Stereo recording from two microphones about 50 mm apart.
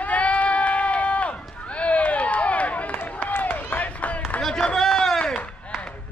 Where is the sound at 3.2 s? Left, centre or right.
Left.